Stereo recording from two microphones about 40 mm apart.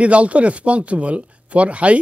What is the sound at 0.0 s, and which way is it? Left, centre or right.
A man's voice, right.